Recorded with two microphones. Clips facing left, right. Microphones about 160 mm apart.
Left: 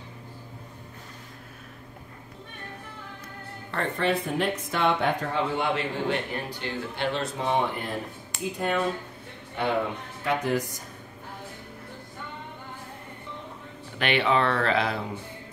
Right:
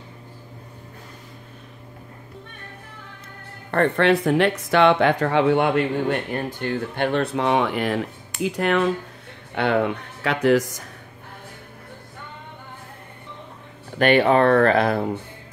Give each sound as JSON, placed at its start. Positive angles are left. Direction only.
{"t": 3.7, "sound": "speech", "side_deg": -65}
{"t": 13.9, "sound": "speech", "side_deg": -45}